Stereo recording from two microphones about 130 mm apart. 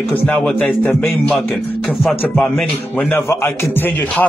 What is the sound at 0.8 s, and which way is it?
Music, 15° left (ahead or behind).